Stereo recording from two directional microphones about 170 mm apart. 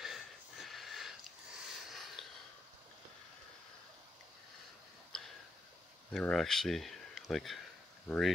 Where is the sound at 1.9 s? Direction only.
Centre (ahead or behind).